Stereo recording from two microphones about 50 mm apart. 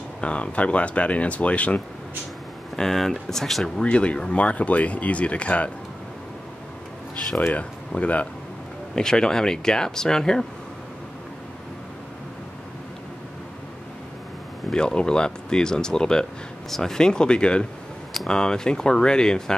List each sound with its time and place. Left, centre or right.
0.2 s speech: left
2.7 s speech: centre
3.8 s speech: left
7.5 s speech: left
8.9 s speech: centre
14.7 s speech: centre
18.1 s speech: centre